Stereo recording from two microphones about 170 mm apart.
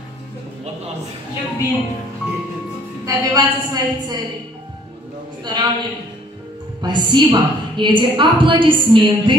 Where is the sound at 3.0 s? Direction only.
20° right (ahead or behind).